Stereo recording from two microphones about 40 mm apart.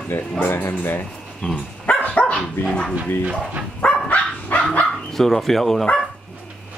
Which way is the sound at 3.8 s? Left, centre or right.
Left.